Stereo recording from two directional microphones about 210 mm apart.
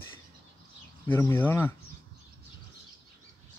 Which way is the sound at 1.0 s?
10° left (ahead or behind).